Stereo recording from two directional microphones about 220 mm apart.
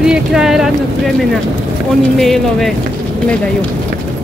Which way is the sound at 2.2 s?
Centre (ahead or behind).